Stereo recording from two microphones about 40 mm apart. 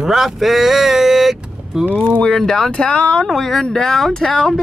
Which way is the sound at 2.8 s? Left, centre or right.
Left.